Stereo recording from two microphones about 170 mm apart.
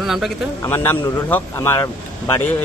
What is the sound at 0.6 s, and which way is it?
Speech, 15° left (ahead or behind).